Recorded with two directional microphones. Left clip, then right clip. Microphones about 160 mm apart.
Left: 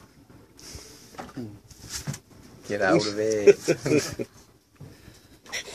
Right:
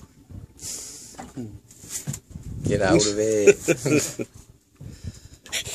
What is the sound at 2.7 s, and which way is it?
Speech, 80° right.